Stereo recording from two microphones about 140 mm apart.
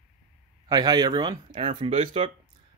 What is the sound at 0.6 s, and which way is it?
Speech, 30° right (ahead or behind).